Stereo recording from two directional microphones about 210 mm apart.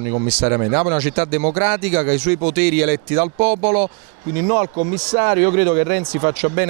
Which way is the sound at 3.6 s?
35° right (ahead or behind).